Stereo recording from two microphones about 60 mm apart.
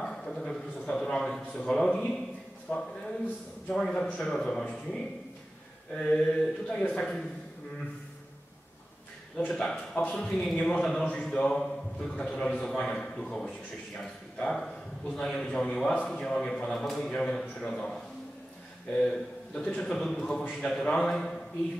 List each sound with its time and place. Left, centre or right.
0.0 s a sound: centre
1.4 s speech: centre
2.7 s a man's voice: left
3.7 s speech: centre
9.5 s speech: centre
16.7 s a man's voice: centre
18.9 s a man's voice: centre